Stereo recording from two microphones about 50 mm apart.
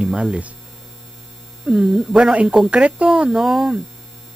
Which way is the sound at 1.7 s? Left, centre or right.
Centre.